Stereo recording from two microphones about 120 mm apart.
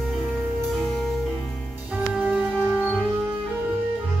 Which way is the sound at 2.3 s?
5° right (ahead or behind).